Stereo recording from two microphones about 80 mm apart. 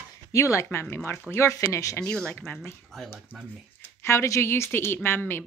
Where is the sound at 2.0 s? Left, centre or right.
Centre.